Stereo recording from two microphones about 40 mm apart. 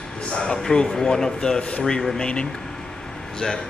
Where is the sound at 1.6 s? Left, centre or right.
Left.